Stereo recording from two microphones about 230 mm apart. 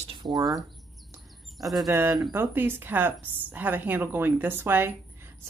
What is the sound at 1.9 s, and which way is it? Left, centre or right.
A woman's voice, centre.